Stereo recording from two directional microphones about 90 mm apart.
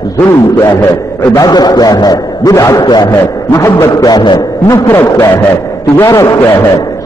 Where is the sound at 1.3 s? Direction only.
50° left (ahead or behind).